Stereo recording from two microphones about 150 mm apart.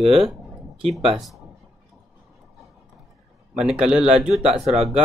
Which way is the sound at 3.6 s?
5° right (ahead or behind).